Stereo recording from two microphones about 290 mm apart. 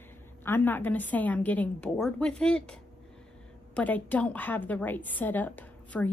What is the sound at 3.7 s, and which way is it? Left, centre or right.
A woman's voice, centre.